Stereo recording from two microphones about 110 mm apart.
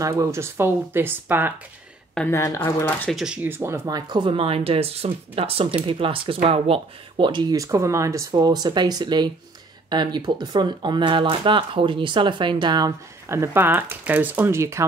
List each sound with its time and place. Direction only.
0.0 s speech: 30° right (ahead or behind)
2.2 s speech: 25° left (ahead or behind)
3.1 s speech: centre (ahead or behind)
3.4 s speech: 20° right (ahead or behind); by 12.9 s 40° right (ahead or behind)
13.3 s speech: 25° right (ahead or behind)